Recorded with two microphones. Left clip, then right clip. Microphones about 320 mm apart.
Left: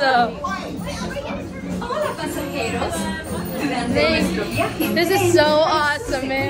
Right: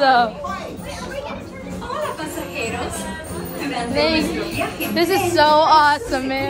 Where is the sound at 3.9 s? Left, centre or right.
Centre.